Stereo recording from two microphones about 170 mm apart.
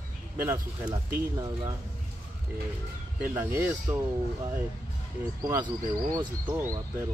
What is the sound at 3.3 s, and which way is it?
Speech, 10° right (ahead or behind).